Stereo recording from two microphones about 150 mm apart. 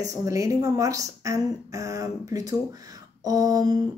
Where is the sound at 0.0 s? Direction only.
20° right (ahead or behind).